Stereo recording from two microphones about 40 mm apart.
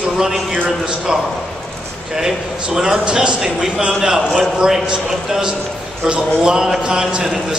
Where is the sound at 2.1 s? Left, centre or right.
Centre.